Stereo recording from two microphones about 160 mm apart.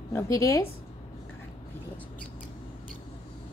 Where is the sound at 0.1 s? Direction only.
20° left (ahead or behind).